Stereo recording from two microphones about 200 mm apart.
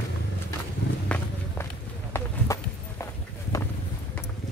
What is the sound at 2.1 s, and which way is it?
Run, 15° left (ahead or behind).